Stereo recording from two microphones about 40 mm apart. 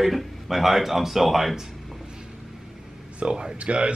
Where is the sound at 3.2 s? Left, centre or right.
Right.